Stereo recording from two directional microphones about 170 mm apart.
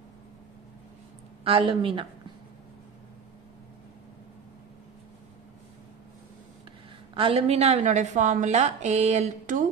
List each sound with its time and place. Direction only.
1.4 s a woman's voice: 30° right (ahead or behind)
7.2 s a woman's voice: 35° right (ahead or behind)